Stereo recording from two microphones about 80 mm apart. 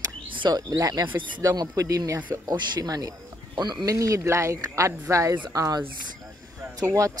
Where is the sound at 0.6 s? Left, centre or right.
Right.